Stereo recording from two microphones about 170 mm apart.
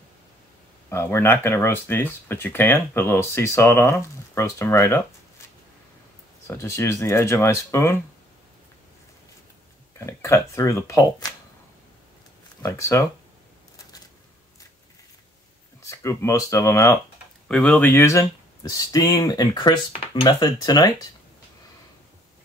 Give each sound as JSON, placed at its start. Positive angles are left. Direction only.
{"t": 0.8, "sound": "speech", "side_deg": 15}
{"t": 6.4, "sound": "speech", "side_deg": 15}
{"t": 9.9, "sound": "speech", "side_deg": 20}
{"t": 12.6, "sound": "speech", "side_deg": 20}
{"t": 15.8, "sound": "speech", "side_deg": 20}